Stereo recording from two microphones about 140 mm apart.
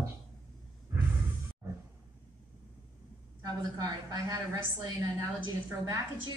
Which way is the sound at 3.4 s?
25° right (ahead or behind).